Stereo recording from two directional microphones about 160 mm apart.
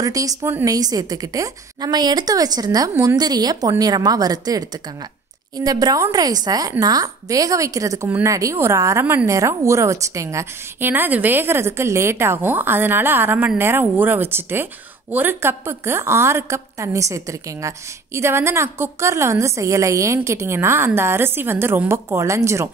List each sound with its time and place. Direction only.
0.0 s a woman's voice: 20° right (ahead or behind)